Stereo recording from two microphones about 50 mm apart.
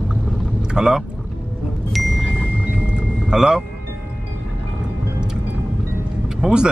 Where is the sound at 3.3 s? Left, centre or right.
Centre.